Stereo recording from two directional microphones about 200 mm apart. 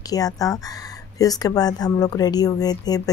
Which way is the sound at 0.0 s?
20° left (ahead or behind).